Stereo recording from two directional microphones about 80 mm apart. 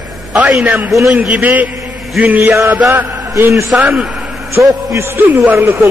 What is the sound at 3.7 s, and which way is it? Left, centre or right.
Speech, centre.